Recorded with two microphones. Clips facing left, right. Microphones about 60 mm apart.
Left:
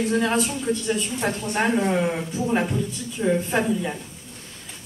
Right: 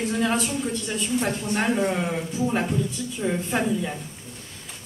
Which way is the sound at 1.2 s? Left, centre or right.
Centre.